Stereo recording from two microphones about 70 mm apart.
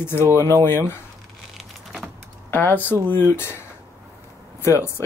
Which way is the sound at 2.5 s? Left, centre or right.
Left.